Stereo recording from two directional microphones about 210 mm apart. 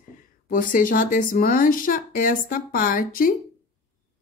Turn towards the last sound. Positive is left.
turn(degrees=40)  # may be behind; listen again after turning